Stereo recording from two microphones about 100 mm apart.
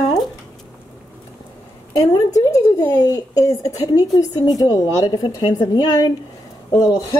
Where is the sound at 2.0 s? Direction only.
35° left (ahead or behind).